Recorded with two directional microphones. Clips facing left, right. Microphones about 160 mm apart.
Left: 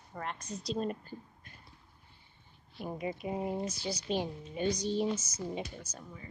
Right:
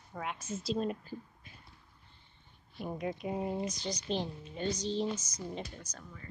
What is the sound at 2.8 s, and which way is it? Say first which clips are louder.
A woman's voice: even; 5° left (ahead or behind).